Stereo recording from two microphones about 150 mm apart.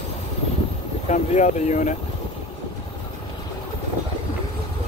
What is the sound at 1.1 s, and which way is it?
Speech, 55° left (ahead or behind).